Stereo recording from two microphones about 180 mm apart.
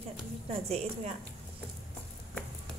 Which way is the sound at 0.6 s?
35° right (ahead or behind).